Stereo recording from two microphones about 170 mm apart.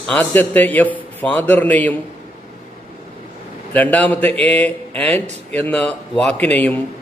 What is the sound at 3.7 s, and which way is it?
A man's voice, 10° left (ahead or behind).